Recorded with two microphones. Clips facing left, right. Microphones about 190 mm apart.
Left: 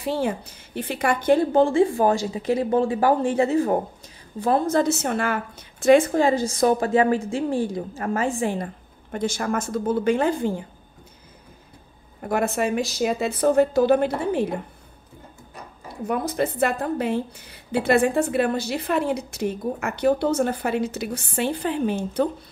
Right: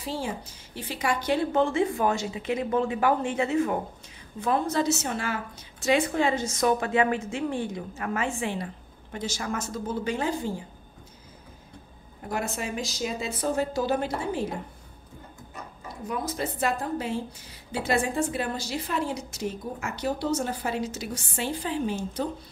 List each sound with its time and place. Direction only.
0.0 s a woman's voice: 60° left (ahead or behind)
1.5 s a woman's voice: 30° left (ahead or behind)
4.7 s a woman's voice: 55° left (ahead or behind)
9.1 s a woman's voice: 55° left (ahead or behind)
12.2 s a woman's voice: 60° left (ahead or behind)
16.1 s a woman's voice: 60° left (ahead or behind)